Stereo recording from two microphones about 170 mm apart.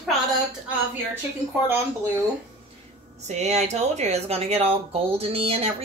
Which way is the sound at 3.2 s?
40° right (ahead or behind).